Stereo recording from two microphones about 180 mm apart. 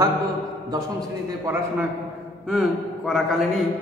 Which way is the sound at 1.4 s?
15° right (ahead or behind).